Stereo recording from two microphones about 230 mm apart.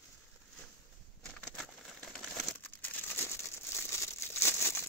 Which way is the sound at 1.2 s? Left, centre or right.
Centre.